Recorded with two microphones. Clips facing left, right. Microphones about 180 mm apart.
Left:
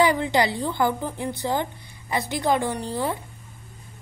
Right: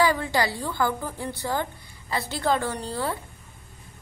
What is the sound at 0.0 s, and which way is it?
A woman's voice, 20° left (ahead or behind).